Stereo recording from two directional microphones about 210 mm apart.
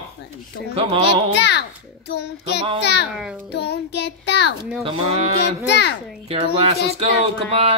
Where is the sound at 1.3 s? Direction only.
55° left (ahead or behind).